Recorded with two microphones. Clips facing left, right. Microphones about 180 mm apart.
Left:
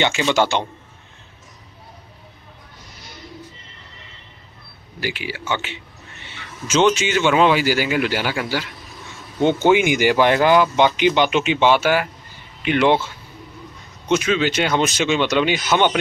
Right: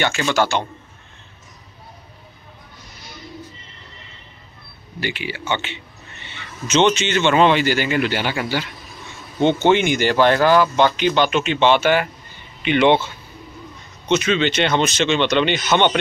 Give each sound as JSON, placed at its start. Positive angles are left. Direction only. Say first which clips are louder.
{"t": 0.0, "sound": "a man's voice", "louder": "left 1 dB", "side_deg": 15}
{"t": 5.0, "sound": "speech", "louder": "right 1 dB", "side_deg": 5}
{"t": 9.7, "sound": "speech", "louder": "left 1 dB", "side_deg": 10}
{"t": 14.0, "sound": "speech", "louder": "even", "side_deg": 5}